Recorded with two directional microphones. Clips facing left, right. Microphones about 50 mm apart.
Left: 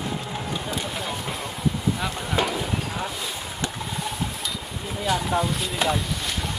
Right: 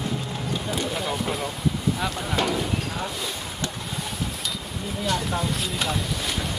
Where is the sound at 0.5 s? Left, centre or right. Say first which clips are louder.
Right 4 dB; centre.